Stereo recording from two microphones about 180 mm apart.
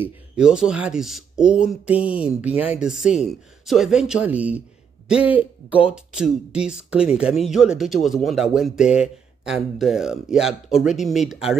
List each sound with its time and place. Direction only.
0.0 s speech: 5° right (ahead or behind)